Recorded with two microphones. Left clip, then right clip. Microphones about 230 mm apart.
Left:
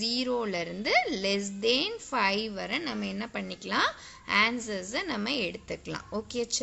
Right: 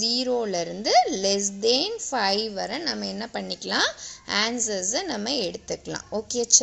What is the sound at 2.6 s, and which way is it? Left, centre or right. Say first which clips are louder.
Speech: right 3 dB; centre.